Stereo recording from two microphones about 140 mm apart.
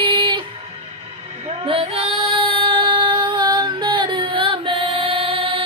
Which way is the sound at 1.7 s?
45° right (ahead or behind).